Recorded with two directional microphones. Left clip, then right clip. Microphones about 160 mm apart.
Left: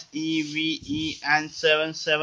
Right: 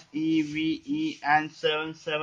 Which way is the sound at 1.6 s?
30° left (ahead or behind).